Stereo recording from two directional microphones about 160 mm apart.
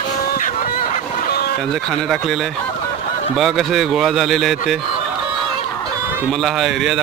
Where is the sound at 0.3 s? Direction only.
55° left (ahead or behind).